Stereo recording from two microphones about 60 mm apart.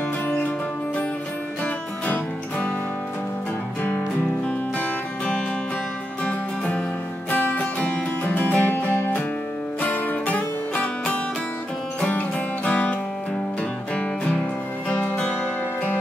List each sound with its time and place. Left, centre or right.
1.6 s music: left
4.5 s music: left
13.9 s music: left